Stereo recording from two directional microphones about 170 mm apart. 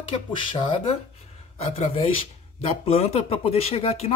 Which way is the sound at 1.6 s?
35° left (ahead or behind).